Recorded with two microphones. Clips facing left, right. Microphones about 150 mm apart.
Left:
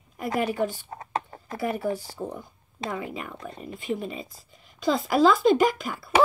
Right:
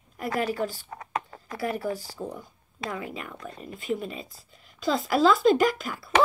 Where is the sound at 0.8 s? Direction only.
30° left (ahead or behind).